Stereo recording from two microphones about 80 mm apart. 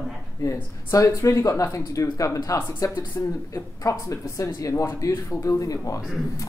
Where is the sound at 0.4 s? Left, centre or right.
Left.